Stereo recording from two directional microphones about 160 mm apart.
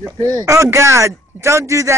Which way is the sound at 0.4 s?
20° right (ahead or behind).